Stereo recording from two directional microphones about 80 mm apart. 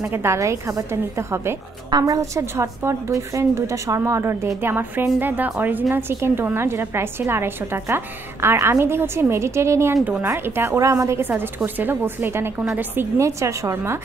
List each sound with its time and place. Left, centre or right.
0.1 s a woman's voice: right
1.9 s a woman's voice: right
10.8 s a woman's voice: right
11.1 s a woman's voice: right
13.2 s a woman's voice: right